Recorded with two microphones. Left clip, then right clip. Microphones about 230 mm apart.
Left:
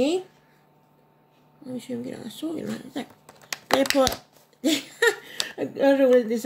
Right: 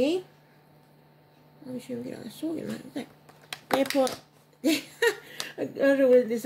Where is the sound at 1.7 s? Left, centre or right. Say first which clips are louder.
Left 3 dB; centre.